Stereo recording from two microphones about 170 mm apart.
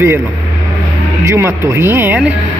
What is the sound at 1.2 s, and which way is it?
Speech, 15° right (ahead or behind).